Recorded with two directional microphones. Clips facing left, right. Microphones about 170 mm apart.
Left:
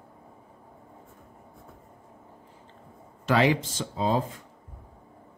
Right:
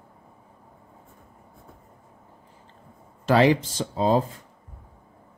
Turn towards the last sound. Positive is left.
turn(degrees=-35)  # may be behind; listen again after turning